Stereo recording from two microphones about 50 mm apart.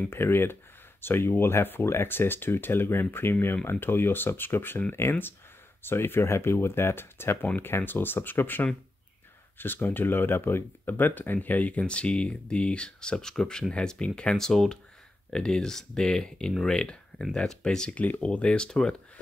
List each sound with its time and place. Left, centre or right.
0.1 s speech: left
7.4 s speech: left
11.8 s speech: left
17.9 s speech: left